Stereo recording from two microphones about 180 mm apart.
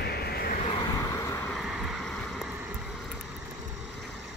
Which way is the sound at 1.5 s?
Centre (ahead or behind).